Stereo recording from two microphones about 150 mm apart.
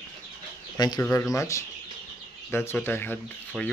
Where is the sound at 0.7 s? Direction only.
30° left (ahead or behind); by 3.7 s 10° left (ahead or behind).